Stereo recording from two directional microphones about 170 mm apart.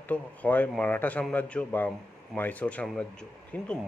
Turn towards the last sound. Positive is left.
turn(degrees=10)  # may be behind; listen again after turning